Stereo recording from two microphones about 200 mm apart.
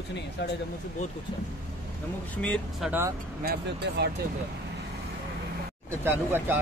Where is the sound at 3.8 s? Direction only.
60° right (ahead or behind).